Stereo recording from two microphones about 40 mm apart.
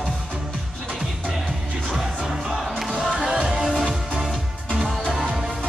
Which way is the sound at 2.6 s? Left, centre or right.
Centre.